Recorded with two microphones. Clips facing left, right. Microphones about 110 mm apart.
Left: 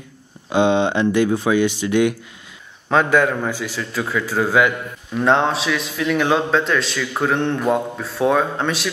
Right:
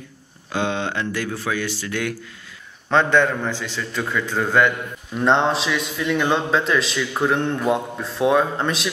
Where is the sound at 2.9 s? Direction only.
5° left (ahead or behind).